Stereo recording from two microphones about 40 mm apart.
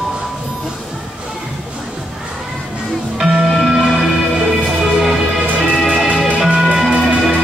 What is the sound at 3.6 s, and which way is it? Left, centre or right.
Music, centre.